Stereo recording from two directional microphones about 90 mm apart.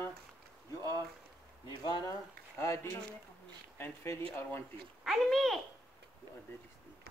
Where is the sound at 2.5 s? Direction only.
35° left (ahead or behind).